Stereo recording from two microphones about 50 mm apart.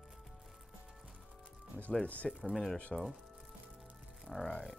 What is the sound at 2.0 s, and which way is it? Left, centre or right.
Speech, left.